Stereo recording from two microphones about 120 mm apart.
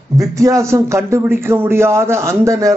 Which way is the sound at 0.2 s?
25° right (ahead or behind).